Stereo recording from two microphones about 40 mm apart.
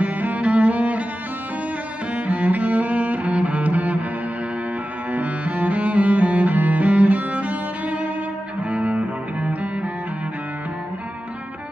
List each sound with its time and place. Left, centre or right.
0.0 s cello: right
2.1 s cello: right
5.1 s cello: right
8.6 s music: right